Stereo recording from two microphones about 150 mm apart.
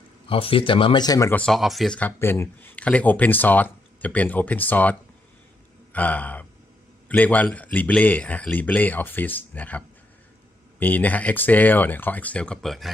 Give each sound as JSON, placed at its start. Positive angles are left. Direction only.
{"t": 0.3, "sound": "speech", "side_deg": 40}
{"t": 1.3, "sound": "speech", "side_deg": 5}
{"t": 5.9, "sound": "speech", "side_deg": 10}